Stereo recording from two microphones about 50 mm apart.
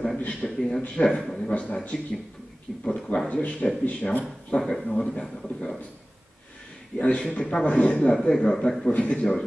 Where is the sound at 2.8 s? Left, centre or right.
Left.